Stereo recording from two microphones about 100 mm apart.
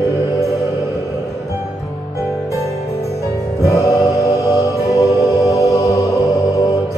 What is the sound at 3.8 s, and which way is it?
Music, 35° left (ahead or behind).